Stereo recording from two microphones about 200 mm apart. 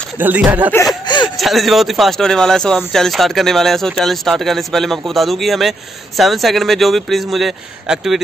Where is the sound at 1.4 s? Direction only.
Centre (ahead or behind).